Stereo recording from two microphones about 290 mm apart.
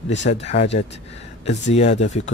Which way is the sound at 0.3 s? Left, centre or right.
Left.